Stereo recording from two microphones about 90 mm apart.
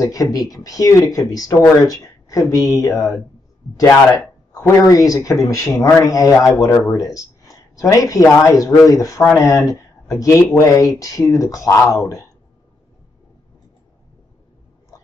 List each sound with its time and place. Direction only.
0.0 s speech: 40° left (ahead or behind)
4.6 s speech: 40° left (ahead or behind)
6.5 s speech: 30° left (ahead or behind)